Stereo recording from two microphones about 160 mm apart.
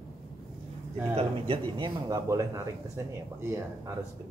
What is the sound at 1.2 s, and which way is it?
A man's voice, 30° right (ahead or behind).